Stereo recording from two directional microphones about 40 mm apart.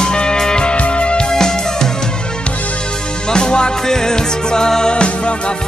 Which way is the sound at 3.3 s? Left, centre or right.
Left.